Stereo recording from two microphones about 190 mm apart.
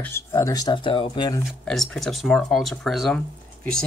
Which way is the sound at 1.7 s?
5° left (ahead or behind).